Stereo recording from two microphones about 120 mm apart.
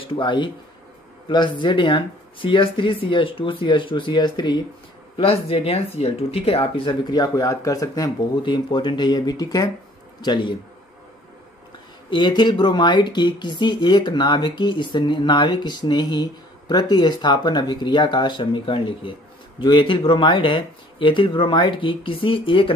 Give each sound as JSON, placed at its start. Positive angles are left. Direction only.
{"t": 0.0, "sound": "speech", "side_deg": 45}
{"t": 5.1, "sound": "speech", "side_deg": 55}
{"t": 12.1, "sound": "speech", "side_deg": 40}